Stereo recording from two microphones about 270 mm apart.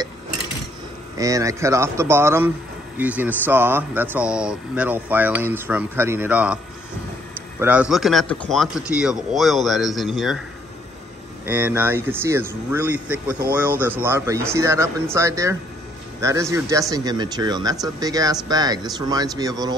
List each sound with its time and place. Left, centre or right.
1.1 s speech: centre
7.6 s speech: centre
11.4 s speech: centre